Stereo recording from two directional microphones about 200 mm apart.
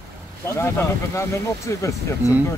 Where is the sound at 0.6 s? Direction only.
10° left (ahead or behind).